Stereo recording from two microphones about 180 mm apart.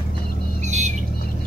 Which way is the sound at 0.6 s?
40° right (ahead or behind).